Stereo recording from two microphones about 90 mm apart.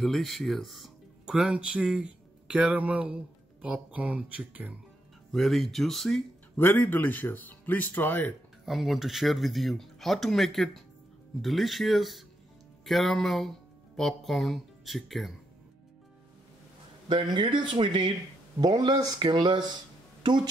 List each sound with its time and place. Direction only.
0.0 s speech: centre (ahead or behind); by 4.7 s 15° right (ahead or behind)
5.3 s speech: centre (ahead or behind)
6.5 s speech: 25° left (ahead or behind)
8.6 s speech: centre (ahead or behind)
17.3 s speech: 60° right (ahead or behind)
18.6 s speech: 50° right (ahead or behind)
19.1 s speech: 55° right (ahead or behind)